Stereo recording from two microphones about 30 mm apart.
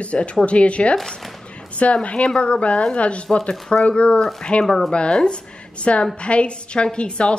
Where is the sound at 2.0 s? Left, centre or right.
Left.